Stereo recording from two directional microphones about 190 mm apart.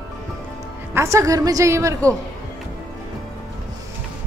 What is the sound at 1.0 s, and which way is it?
A woman's voice, 15° right (ahead or behind).